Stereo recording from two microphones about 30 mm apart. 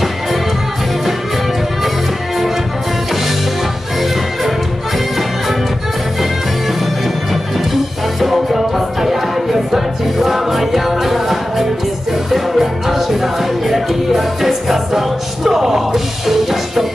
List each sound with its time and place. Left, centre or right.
7.7 s music: centre